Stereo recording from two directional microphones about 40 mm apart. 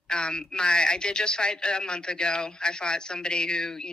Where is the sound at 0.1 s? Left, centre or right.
Left.